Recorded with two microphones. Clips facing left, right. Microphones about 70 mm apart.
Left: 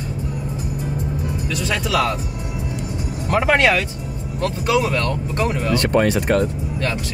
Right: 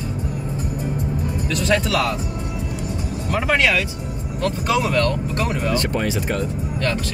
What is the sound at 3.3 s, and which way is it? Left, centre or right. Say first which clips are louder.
Speech: left 3 dB; left.